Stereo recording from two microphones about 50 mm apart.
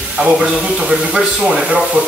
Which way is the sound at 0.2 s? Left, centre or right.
Right.